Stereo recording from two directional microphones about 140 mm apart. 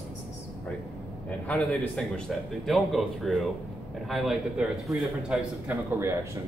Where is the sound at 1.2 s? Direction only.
10° left (ahead or behind).